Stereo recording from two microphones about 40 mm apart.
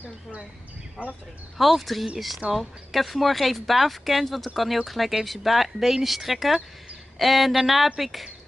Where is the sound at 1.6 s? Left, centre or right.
Centre.